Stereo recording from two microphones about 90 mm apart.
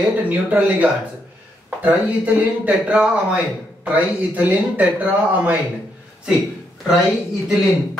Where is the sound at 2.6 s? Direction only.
15° right (ahead or behind).